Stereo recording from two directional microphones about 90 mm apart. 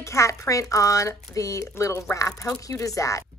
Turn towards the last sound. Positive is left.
turn(degrees=35)  # may be behind; listen again after turning